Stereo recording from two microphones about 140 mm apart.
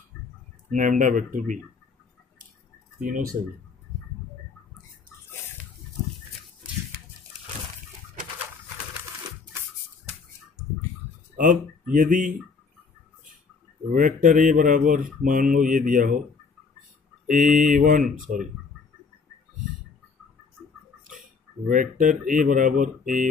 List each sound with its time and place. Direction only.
0.7 s speech: 70° right (ahead or behind)
3.0 s speech: 80° right
11.3 s speech: 70° right (ahead or behind)
13.9 s speech: 70° right (ahead or behind)
17.3 s speech: 65° right (ahead or behind)
21.6 s speech: 70° right (ahead or behind)